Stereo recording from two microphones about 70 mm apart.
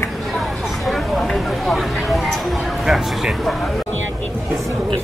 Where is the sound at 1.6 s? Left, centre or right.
Centre.